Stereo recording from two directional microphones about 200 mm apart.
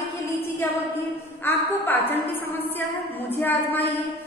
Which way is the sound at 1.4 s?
10° left (ahead or behind).